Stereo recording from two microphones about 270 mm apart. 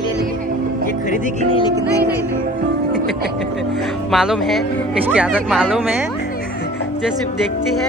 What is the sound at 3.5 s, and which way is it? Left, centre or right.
Speech, centre.